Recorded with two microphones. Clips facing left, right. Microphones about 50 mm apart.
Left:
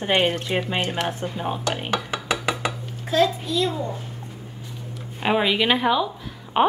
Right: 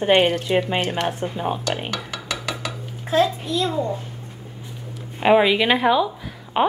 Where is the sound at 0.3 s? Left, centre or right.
Centre.